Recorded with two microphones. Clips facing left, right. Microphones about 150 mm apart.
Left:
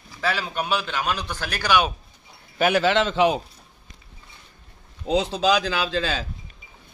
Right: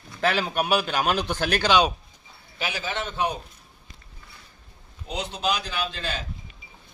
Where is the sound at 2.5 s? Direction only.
60° left (ahead or behind); by 3.3 s 90° left.